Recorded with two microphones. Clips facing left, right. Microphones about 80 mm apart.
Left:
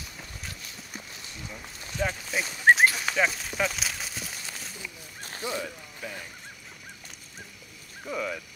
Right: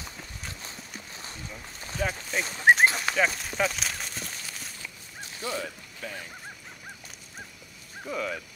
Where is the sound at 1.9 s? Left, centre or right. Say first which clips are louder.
Even; centre.